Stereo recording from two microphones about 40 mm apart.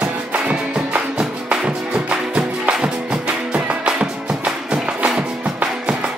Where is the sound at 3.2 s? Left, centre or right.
Right.